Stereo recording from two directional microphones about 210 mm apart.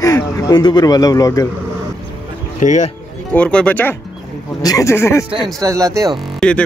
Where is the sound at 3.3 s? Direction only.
5° left (ahead or behind).